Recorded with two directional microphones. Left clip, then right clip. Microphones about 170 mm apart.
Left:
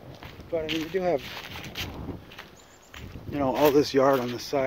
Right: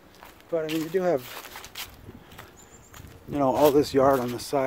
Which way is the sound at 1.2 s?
10° right (ahead or behind).